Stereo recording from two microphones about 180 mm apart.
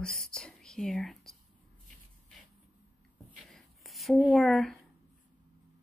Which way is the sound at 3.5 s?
Centre (ahead or behind).